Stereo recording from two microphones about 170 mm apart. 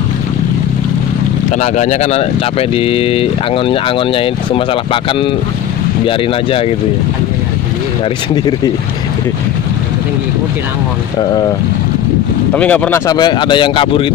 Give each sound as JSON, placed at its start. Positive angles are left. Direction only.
{"t": 1.6, "sound": "speech", "side_deg": 45}
{"t": 12.5, "sound": "speech", "side_deg": 10}
{"t": 13.0, "sound": "speech", "side_deg": 25}